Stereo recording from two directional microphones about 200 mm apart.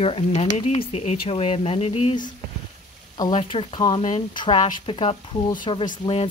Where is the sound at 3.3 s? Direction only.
25° left (ahead or behind).